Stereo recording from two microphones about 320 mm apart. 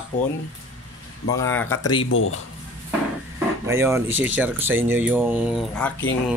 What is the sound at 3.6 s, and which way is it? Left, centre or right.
Speech, centre.